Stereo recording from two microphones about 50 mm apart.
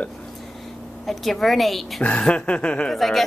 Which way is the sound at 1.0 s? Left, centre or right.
Centre.